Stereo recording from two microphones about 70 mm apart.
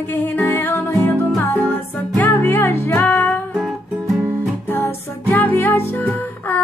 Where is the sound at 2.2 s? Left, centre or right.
Left.